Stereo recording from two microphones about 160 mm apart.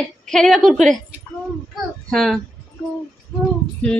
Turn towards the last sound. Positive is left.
turn(degrees=10)  # may be behind; listen again after turning